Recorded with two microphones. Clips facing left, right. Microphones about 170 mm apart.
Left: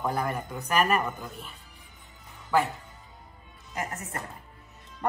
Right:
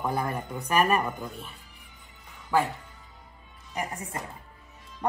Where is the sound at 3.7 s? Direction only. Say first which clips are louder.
Right 1 dB; 15° right (ahead or behind).